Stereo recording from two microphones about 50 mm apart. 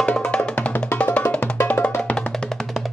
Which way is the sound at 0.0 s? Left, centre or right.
Left.